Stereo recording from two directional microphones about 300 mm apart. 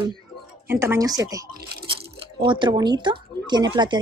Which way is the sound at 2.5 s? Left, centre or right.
Centre.